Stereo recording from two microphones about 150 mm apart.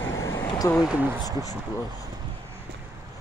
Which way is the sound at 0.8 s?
10° right (ahead or behind).